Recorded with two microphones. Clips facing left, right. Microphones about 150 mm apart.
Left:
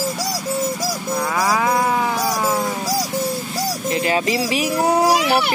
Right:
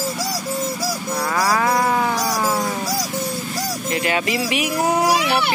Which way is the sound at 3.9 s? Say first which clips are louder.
Left 2 dB; 30° left (ahead or behind).